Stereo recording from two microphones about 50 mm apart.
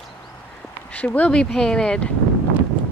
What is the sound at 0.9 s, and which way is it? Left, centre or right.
Speech, left.